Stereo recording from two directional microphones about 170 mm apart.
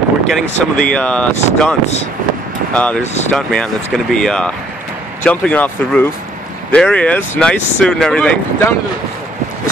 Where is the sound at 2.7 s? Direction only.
5° left (ahead or behind).